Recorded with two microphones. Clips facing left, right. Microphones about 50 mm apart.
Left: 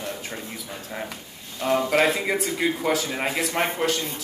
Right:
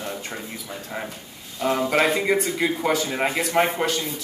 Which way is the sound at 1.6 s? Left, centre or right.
Centre.